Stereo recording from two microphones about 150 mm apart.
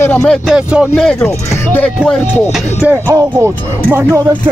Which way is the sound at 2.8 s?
10° right (ahead or behind).